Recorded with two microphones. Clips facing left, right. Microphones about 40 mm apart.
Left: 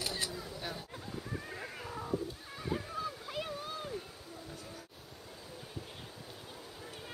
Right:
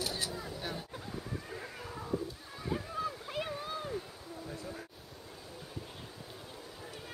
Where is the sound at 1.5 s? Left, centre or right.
Centre.